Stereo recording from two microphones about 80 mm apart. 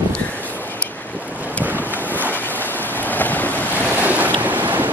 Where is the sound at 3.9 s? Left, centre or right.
Right.